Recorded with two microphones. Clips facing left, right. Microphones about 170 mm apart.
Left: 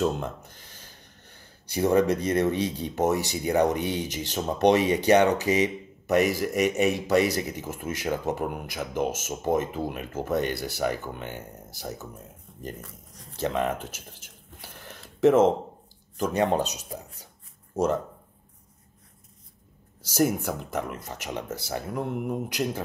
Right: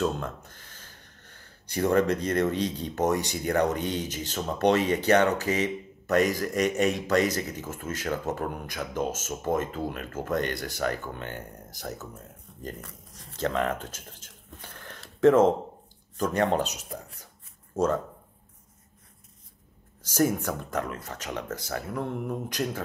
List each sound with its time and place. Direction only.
0.0 s speech: 10° left (ahead or behind)
1.7 s speech: 10° left (ahead or behind)
12.8 s speech: 85° right
13.4 s a sound: 15° left (ahead or behind)
15.2 s speech: 20° left (ahead or behind)
20.0 s speech: 10° left (ahead or behind)